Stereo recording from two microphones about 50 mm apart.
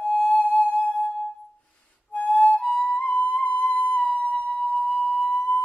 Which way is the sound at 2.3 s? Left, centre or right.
Centre.